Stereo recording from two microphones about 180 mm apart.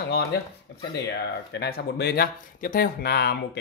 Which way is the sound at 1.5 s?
65° left (ahead or behind).